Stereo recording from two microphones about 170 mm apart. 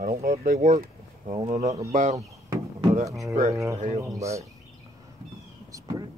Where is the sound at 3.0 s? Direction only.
20° right (ahead or behind).